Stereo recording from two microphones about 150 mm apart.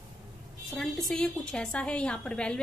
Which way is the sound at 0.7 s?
Centre (ahead or behind).